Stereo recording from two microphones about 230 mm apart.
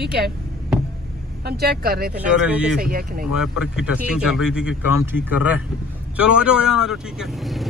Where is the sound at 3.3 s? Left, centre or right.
Centre.